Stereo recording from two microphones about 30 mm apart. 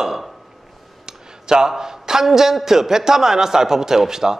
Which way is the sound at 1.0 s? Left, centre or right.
Right.